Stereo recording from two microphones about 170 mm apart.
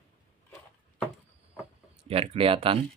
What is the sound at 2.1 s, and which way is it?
Speech, 35° right (ahead or behind).